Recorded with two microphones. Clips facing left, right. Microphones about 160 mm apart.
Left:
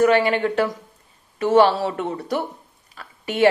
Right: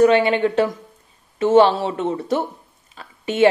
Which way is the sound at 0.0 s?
25° right (ahead or behind).